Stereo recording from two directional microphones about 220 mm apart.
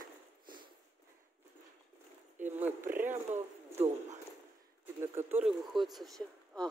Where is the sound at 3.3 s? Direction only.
30° right (ahead or behind).